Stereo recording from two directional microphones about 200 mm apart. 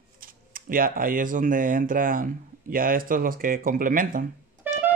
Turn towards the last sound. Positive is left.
turn(degrees=-10)  # may be behind; listen again after turning